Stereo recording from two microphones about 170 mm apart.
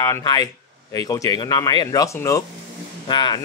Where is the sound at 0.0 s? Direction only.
20° left (ahead or behind).